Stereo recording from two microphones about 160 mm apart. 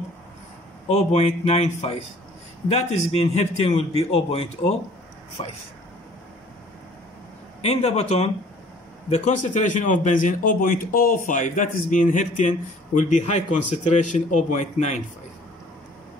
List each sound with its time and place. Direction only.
0.8 s a man's voice: 40° left (ahead or behind)
7.6 s a man's voice: 40° left (ahead or behind)